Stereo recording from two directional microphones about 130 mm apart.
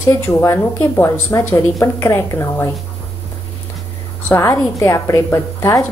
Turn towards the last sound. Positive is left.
turn(degrees=25)  # may be behind; listen again after turning